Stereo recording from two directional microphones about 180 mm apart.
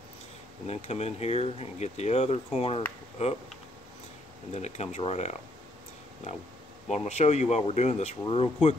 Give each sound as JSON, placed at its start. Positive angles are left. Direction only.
{"t": 0.7, "sound": "speech", "side_deg": 35}
{"t": 4.5, "sound": "speech", "side_deg": 40}
{"t": 6.9, "sound": "speech", "side_deg": 40}